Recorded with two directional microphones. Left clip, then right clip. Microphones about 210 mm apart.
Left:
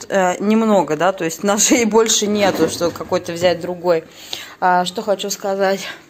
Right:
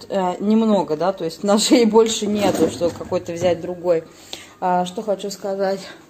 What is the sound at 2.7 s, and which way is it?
Speech, 25° left (ahead or behind).